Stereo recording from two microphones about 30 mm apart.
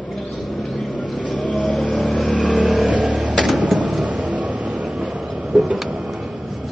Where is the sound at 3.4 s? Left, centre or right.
Centre.